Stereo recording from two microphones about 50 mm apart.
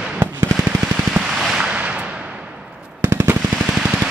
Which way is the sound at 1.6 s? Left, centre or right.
Right.